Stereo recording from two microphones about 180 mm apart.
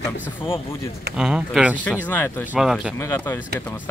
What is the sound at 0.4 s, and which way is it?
Speech, 30° left (ahead or behind).